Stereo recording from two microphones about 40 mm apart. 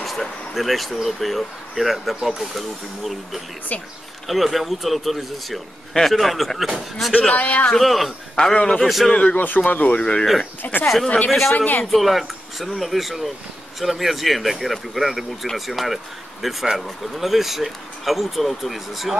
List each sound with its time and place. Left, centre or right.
0.0 s speech: centre
7.2 s a man's voice: left
7.8 s speech: centre
8.4 s speech: left
8.8 s speech: centre
9.1 s a man's voice: left
9.4 s speech: left
9.9 s speech: left
10.6 s speech: left
11.2 s speech: centre
11.5 s speech: left
11.9 s speech: centre